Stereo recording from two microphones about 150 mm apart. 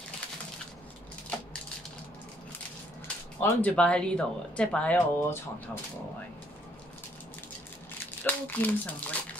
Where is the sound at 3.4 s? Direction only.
10° left (ahead or behind).